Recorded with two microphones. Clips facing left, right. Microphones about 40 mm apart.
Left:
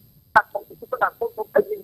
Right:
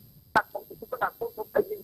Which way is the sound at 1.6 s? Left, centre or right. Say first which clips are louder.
Left 7 dB; left.